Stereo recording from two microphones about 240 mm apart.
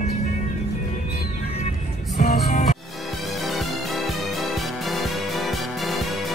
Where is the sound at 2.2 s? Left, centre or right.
Left.